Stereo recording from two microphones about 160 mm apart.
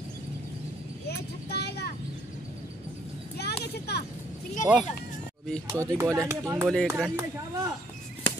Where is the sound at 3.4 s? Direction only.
90° left.